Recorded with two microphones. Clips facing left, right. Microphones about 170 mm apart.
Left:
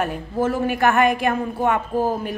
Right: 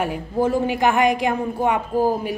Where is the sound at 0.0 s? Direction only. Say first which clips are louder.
Right 1 dB; 15° right (ahead or behind).